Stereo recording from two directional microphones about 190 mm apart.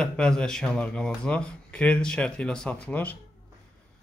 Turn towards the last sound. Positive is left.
turn(degrees=10)  # may be behind; listen again after turning